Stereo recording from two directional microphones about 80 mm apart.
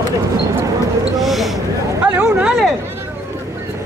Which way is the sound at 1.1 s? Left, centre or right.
Centre.